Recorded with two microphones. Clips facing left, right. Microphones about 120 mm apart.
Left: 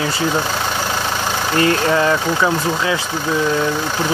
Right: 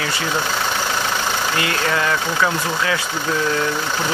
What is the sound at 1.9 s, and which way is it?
Speech, 25° left (ahead or behind).